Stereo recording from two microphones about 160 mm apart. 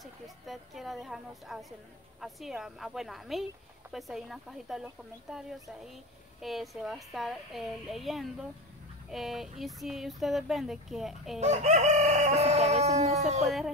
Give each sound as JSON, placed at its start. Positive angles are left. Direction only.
{"t": 0.0, "sound": "a sound", "side_deg": 0}
{"t": 2.1, "sound": "speech", "side_deg": 0}
{"t": 11.3, "sound": "chicken", "side_deg": -45}